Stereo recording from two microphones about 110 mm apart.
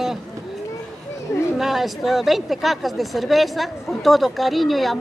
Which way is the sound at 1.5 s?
Centre (ahead or behind).